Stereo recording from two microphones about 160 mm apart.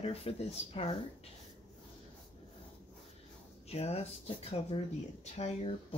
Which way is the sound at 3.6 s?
40° left (ahead or behind).